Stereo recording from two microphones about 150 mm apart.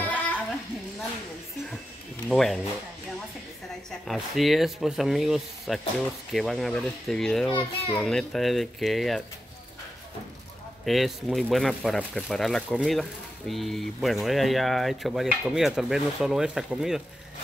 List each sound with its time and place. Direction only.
0.0 s music: 10° left (ahead or behind)
2.2 s speech: centre (ahead or behind)
4.1 s speech: centre (ahead or behind)
10.9 s speech: centre (ahead or behind)